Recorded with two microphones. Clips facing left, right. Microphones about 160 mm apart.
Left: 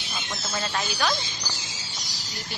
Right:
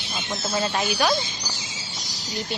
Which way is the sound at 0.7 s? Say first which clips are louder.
Right 3 dB; 15° right (ahead or behind).